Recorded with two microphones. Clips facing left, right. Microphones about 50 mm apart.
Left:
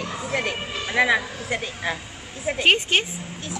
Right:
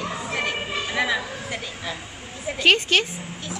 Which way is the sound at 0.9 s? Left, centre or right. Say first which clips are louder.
Left 5 dB; left.